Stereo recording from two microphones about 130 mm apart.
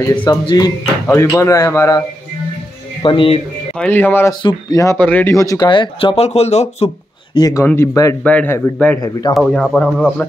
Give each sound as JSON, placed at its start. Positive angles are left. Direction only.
{"t": 0.2, "sound": "speech", "side_deg": 35}
{"t": 3.0, "sound": "speech", "side_deg": 40}
{"t": 3.7, "sound": "speech", "side_deg": 10}
{"t": 4.3, "sound": "speech", "side_deg": 30}
{"t": 4.9, "sound": "speech", "side_deg": 10}
{"t": 5.3, "sound": "speech", "side_deg": 25}
{"t": 7.3, "sound": "speech", "side_deg": 30}
{"t": 7.6, "sound": "speech", "side_deg": 20}
{"t": 8.2, "sound": "speech", "side_deg": 10}